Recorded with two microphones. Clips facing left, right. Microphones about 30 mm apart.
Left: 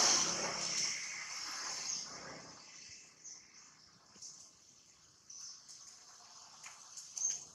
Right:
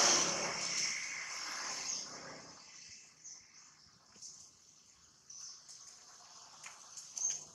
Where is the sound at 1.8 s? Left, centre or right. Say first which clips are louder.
Right 1 dB; centre.